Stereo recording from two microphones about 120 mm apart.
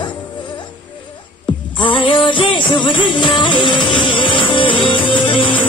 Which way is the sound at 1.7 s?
45° left (ahead or behind).